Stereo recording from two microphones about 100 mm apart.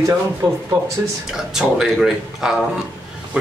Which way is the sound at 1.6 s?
5° right (ahead or behind).